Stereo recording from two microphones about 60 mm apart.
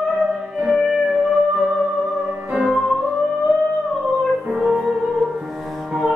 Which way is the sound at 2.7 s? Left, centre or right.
Centre.